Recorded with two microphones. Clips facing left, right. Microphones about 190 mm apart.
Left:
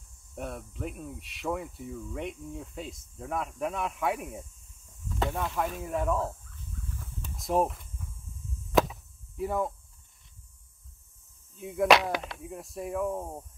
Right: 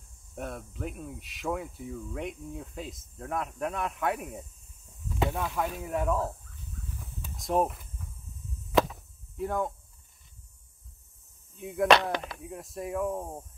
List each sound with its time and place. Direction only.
0.4 s speech: centre (ahead or behind)
7.3 s speech: centre (ahead or behind)
9.4 s speech: centre (ahead or behind)
11.5 s speech: centre (ahead or behind)